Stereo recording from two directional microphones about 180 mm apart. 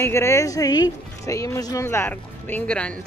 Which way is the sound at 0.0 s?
15° left (ahead or behind).